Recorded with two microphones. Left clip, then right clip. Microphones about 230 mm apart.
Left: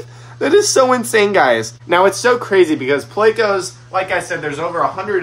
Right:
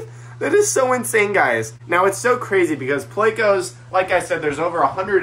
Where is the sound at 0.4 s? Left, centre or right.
Left.